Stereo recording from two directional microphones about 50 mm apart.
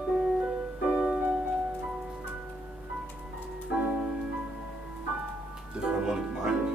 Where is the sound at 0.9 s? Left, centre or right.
Centre.